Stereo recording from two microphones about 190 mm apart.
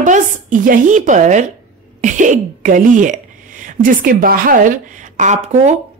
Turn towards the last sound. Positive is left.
turn(degrees=-40)  # may be behind; listen again after turning